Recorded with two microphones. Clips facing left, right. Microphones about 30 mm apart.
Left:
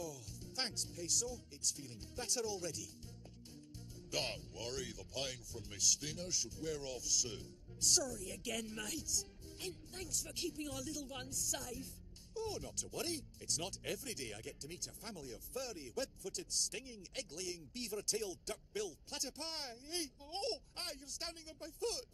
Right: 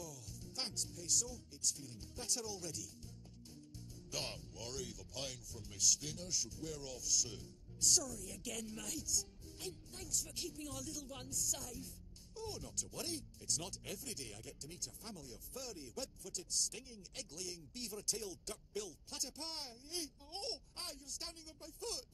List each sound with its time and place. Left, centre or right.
0.0 s music: left
1.7 s speech: left
4.1 s speech: left